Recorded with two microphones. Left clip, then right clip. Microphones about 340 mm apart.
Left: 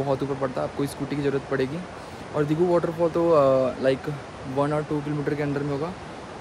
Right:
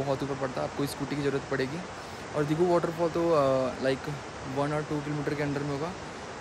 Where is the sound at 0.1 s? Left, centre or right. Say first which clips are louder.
Left 5 dB; centre.